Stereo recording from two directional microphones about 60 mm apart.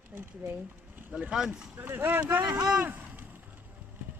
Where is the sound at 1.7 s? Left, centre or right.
Right.